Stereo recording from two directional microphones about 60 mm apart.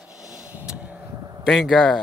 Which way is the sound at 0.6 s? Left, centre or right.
Right.